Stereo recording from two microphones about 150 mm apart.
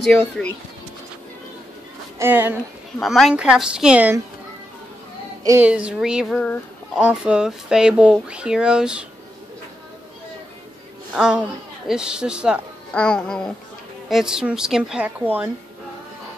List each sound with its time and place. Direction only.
0.4 s speech: 5° left (ahead or behind)
2.1 s a woman's voice: 15° right (ahead or behind)
3.0 s speech: centre (ahead or behind)
5.4 s speech: 20° right (ahead or behind)
5.7 s speech: 5° right (ahead or behind)
11.1 s speech: 5° right (ahead or behind)
12.9 s speech: 5° left (ahead or behind); by 15.5 s 10° right (ahead or behind)